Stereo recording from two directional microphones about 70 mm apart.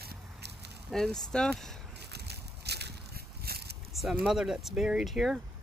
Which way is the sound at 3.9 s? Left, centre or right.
Centre.